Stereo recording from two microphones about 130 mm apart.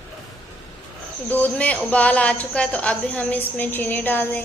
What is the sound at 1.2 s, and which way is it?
Speech, 15° left (ahead or behind).